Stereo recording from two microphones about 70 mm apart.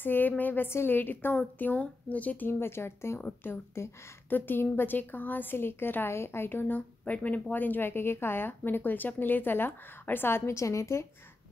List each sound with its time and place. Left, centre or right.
0.0 s a woman's voice: left
3.2 s a woman's voice: left
3.8 s speech: left
4.3 s a woman's voice: left